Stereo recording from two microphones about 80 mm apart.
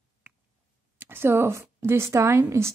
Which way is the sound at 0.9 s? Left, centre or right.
Right.